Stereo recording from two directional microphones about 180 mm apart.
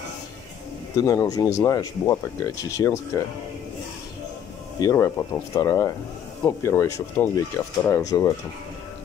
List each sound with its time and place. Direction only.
1.0 s speech: 20° left (ahead or behind)
4.7 s speech: 15° left (ahead or behind)